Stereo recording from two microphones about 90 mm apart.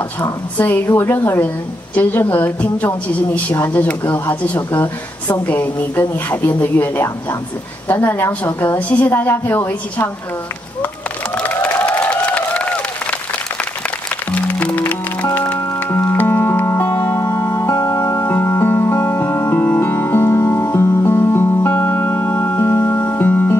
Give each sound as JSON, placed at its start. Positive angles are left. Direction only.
{"t": 0.2, "sound": "a woman's voice", "side_deg": 20}
{"t": 11.3, "sound": "applause", "side_deg": 15}
{"t": 14.3, "sound": "music", "side_deg": 15}
{"t": 17.2, "sound": "music", "side_deg": 35}
{"t": 18.3, "sound": "music", "side_deg": 25}